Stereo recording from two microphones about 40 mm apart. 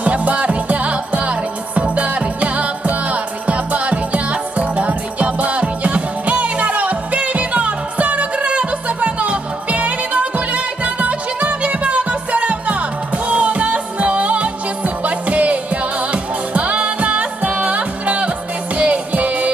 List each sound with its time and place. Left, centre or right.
0.0 s music: right